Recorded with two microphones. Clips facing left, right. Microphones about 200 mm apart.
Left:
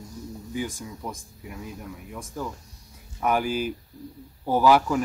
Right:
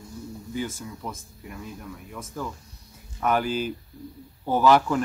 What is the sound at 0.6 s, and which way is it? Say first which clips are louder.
Speech: even; 15° left (ahead or behind).